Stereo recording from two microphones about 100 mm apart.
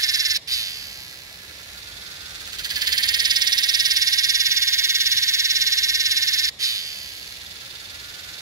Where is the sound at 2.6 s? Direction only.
40° right (ahead or behind).